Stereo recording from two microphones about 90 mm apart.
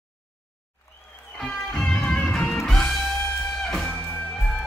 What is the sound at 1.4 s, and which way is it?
Music, 5° left (ahead or behind).